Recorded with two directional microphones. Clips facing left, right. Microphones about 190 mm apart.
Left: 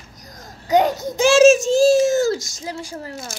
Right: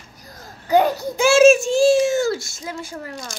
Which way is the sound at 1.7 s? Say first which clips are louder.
Left 1 dB; 40° left (ahead or behind).